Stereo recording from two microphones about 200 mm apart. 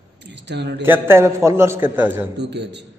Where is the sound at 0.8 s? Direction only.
10° right (ahead or behind).